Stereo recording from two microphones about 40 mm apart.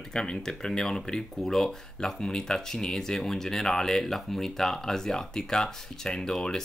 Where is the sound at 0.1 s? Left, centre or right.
Centre.